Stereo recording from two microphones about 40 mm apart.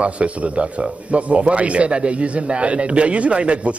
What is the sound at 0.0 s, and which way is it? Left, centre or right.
Speech, right.